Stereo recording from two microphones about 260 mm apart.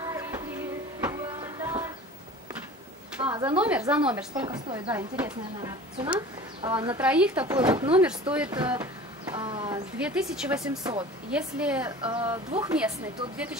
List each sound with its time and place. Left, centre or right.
0.0 s a sound: centre
3.3 s a woman's voice: centre
4.5 s a woman's voice: centre
4.9 s a woman's voice: centre
8.6 s a sound: centre
9.9 s a woman's voice: centre
10.8 s a woman's voice: centre
11.2 s a woman's voice: centre
12.0 s a woman's voice: centre
12.5 s a woman's voice: centre